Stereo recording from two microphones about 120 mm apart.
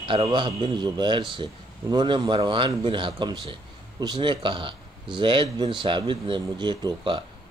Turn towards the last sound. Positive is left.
turn(degrees=-40)  # may be behind; listen again after turning